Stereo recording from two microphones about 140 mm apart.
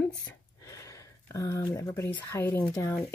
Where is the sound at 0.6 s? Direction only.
25° left (ahead or behind).